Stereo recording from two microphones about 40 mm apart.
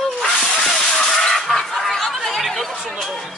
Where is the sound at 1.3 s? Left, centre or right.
Centre.